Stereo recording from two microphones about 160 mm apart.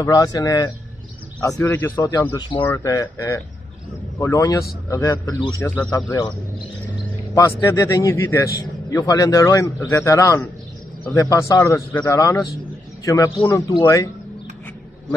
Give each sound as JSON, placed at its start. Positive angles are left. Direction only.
{"t": 0.0, "sound": "a man's voice", "side_deg": 20}
{"t": 7.3, "sound": "a man's voice", "side_deg": 20}